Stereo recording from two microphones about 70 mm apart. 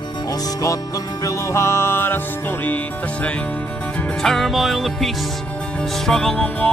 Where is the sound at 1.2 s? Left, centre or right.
Left.